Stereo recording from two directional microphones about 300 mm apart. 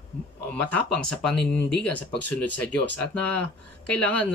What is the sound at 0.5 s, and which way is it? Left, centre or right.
Speech, centre.